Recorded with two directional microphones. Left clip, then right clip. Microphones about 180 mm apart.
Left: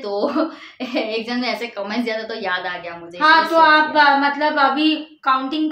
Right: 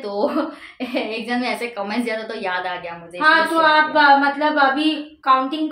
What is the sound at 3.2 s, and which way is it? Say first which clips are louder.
A woman's voice: left 2 dB; 20° left (ahead or behind).